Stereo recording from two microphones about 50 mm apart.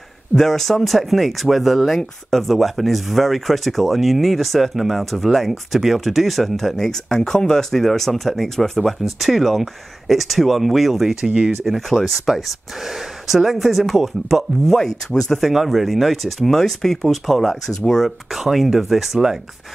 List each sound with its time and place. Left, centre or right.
0.4 s speech: centre
11.1 s speech: centre
11.6 s speech: centre
15.5 s speech: centre